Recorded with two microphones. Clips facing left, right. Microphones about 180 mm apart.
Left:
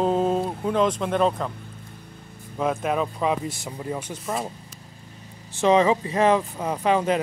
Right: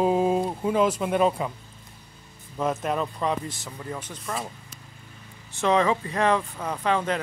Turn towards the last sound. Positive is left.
turn(degrees=15)  # may be behind; listen again after turning